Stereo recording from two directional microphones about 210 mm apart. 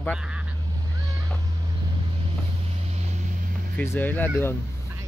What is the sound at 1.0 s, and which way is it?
Cat, 15° right (ahead or behind).